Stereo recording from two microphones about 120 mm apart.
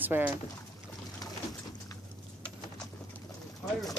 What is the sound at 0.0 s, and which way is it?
Speech, 15° right (ahead or behind).